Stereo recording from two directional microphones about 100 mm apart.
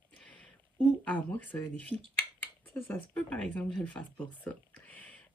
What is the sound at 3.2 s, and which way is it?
Speech, 10° left (ahead or behind).